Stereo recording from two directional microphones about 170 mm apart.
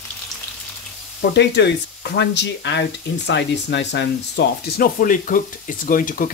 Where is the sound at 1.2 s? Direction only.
90° left.